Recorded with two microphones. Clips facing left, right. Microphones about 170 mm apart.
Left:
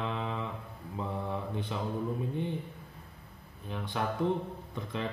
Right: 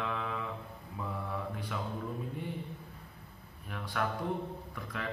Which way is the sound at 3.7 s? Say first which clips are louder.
Left 1 dB; 25° left (ahead or behind).